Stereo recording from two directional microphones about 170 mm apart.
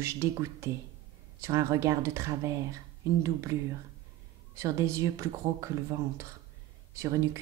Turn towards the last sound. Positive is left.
turn(degrees=-20)  # may be behind; listen again after turning